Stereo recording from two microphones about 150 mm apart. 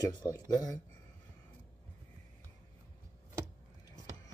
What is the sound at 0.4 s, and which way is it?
Speech, 25° left (ahead or behind).